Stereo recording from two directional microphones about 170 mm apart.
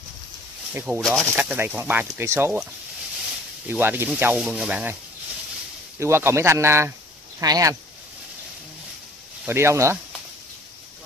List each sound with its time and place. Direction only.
0.7 s speech: 10° right (ahead or behind)
1.0 s speech: centre (ahead or behind); by 2.6 s 15° right (ahead or behind)
3.6 s speech: 10° right (ahead or behind)
5.9 s speech: 15° right (ahead or behind)
9.5 s speech: 15° right (ahead or behind)